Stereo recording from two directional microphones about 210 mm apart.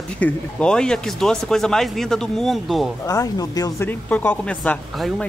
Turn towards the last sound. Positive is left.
turn(degrees=5)  # may be behind; listen again after turning